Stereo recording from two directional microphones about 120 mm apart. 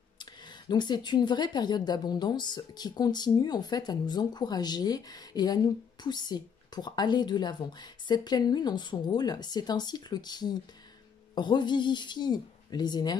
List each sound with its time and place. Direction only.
0.2 s speech: 35° left (ahead or behind)